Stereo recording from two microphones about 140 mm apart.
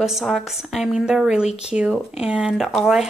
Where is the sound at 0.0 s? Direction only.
Centre (ahead or behind).